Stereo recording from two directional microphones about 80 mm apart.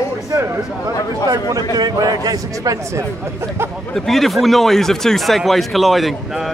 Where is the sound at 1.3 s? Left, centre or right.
Right.